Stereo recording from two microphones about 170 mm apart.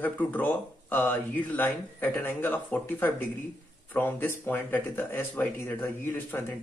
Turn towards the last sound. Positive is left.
turn(degrees=10)  # may be behind; listen again after turning